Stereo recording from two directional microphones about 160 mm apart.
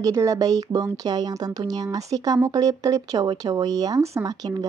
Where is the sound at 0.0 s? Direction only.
20° right (ahead or behind).